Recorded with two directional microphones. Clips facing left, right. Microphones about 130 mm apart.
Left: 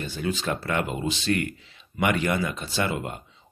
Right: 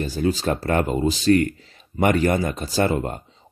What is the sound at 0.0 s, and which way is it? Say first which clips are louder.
Speech: right 6 dB; 40° right (ahead or behind).